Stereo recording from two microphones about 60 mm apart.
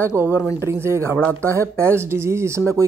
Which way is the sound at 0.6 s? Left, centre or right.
Right.